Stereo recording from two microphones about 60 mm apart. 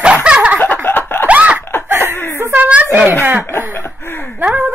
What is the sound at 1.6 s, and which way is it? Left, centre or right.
Laughter, left.